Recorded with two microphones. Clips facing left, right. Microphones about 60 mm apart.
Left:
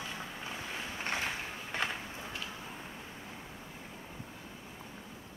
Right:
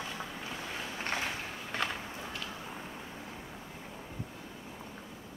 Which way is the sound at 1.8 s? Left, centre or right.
Left.